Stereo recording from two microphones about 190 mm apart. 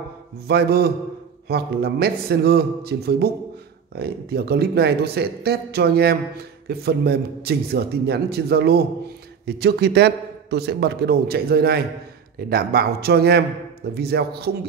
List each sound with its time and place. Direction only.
0.5 s speech: 55° right (ahead or behind)